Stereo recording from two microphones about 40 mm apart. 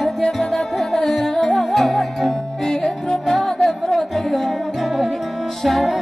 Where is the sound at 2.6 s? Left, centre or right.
Centre.